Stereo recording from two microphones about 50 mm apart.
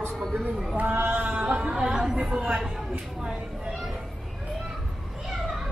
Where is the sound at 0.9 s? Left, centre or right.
Right.